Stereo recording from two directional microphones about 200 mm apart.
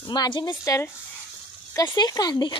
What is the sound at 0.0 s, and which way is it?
Speech, 20° left (ahead or behind).